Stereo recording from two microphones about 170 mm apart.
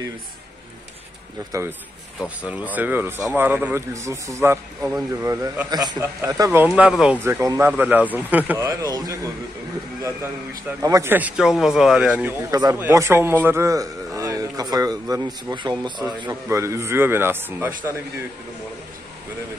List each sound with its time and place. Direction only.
1.5 s speech: 20° right (ahead or behind)
2.1 s a man's voice: 5° right (ahead or behind)
10.8 s a man's voice: 20° right (ahead or behind)
12.4 s a man's voice: 20° right (ahead or behind)